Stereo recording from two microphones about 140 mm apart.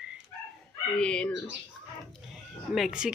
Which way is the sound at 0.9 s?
5° left (ahead or behind).